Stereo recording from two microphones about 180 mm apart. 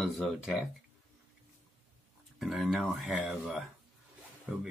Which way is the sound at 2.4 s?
Centre (ahead or behind).